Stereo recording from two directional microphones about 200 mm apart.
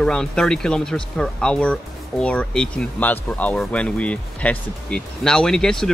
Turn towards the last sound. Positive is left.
turn(degrees=5)  # may be behind; listen again after turning